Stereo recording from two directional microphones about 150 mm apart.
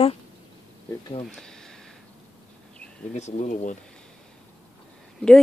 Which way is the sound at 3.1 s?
50° left (ahead or behind).